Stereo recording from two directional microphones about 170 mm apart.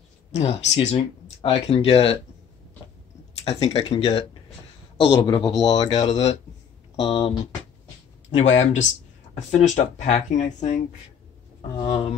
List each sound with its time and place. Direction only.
0.4 s speech: 35° left (ahead or behind)
3.3 s speech: 35° left (ahead or behind)
5.9 s speech: 35° left (ahead or behind)
11.9 s speech: 40° left (ahead or behind)